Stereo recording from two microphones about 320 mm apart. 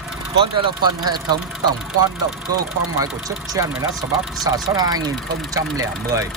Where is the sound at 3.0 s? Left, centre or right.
Centre.